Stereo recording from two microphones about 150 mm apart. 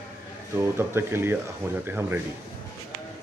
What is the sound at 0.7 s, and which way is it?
Speech, 15° right (ahead or behind).